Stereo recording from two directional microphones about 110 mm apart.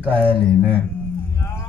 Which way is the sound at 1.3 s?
25° left (ahead or behind).